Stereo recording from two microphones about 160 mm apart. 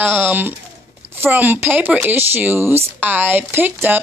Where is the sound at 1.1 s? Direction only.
10° right (ahead or behind).